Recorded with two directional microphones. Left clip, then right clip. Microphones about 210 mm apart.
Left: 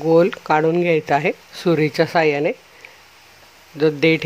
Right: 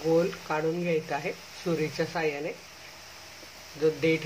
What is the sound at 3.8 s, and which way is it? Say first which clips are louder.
Speech: left 9 dB; 50° left (ahead or behind).